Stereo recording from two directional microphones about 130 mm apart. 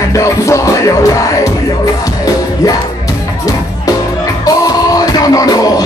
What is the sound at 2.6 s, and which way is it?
Music, 25° left (ahead or behind).